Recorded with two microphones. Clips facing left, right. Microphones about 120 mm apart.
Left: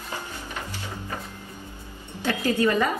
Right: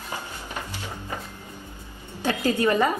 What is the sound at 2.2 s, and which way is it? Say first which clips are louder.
Music: even; 20° right (ahead or behind).